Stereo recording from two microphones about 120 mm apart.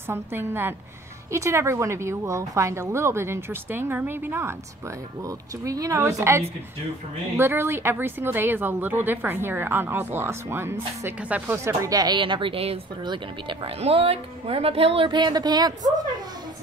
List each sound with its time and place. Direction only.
0.1 s a woman's voice: 20° right (ahead or behind); by 13.7 s 40° right (ahead or behind)
13.7 s speech: 55° right (ahead or behind)
15.0 s a woman's voice: 40° right (ahead or behind)